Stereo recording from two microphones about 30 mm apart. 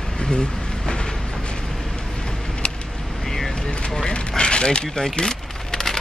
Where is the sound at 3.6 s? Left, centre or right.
Left.